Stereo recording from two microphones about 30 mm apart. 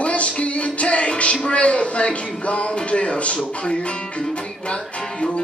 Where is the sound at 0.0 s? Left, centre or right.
Left.